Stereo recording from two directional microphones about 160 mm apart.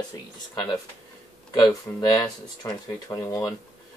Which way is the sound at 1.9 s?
10° left (ahead or behind).